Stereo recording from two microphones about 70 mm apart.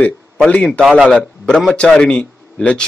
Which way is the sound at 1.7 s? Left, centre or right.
Centre.